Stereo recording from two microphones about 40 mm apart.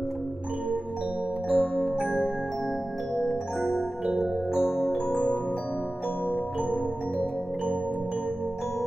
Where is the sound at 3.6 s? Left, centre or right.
Centre.